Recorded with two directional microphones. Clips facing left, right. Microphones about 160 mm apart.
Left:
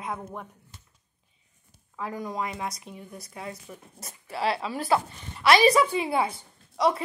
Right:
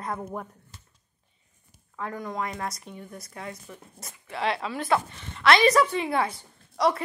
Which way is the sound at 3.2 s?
25° left (ahead or behind).